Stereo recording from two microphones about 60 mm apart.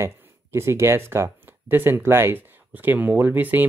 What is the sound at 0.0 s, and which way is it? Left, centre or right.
Speech, right.